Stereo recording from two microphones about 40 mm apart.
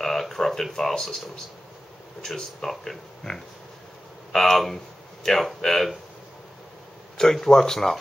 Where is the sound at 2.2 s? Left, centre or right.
Centre.